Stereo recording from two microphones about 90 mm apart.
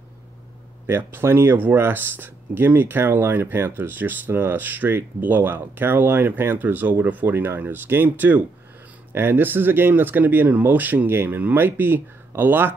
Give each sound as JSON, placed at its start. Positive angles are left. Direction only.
{"t": 0.8, "sound": "speech", "side_deg": -25}